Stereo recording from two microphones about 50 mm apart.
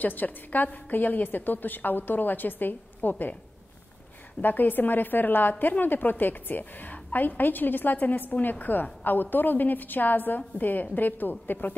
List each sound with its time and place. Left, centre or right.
0.0 s a woman's voice: left
4.4 s a woman's voice: left